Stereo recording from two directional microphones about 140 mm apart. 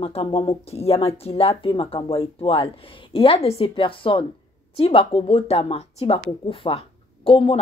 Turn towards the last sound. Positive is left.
turn(degrees=45)  # may be behind; listen again after turning